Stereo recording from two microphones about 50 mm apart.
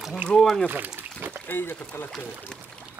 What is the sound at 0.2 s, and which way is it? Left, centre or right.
Speech, right.